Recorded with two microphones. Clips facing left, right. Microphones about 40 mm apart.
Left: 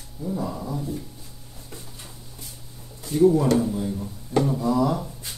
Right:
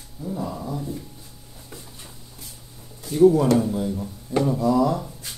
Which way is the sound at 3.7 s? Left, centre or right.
Centre.